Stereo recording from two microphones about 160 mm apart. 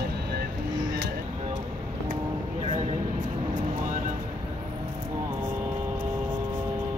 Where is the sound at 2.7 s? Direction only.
45° right (ahead or behind).